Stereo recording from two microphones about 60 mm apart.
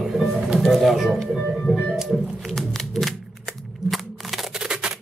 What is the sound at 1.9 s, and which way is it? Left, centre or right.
Typewriter, centre.